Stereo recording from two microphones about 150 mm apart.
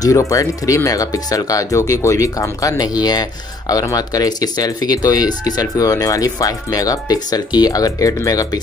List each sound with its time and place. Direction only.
0.0 s speech: 20° left (ahead or behind)